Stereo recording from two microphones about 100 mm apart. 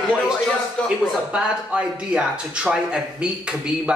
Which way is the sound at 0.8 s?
10° left (ahead or behind).